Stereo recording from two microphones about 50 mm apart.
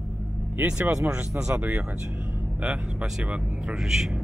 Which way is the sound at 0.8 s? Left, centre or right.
Right.